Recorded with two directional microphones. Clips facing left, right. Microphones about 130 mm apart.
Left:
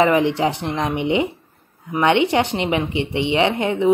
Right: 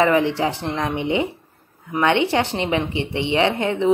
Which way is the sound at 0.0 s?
15° left (ahead or behind).